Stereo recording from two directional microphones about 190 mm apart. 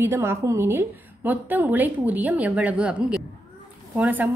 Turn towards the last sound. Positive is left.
turn(degrees=-10)  # may be behind; listen again after turning